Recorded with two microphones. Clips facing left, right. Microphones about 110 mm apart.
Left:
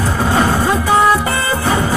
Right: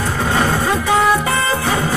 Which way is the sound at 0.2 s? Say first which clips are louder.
Left 3 dB; 20° left (ahead or behind).